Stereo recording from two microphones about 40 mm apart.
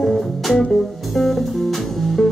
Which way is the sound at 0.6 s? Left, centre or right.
Centre.